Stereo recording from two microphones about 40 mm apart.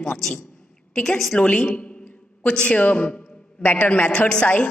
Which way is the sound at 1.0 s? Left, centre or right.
Centre.